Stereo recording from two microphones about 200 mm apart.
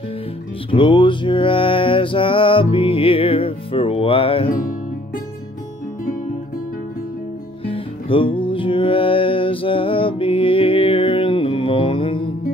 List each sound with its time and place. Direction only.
0.7 s music: 25° left (ahead or behind)
4.5 s music: 45° left (ahead or behind)
7.6 s music: 25° left (ahead or behind)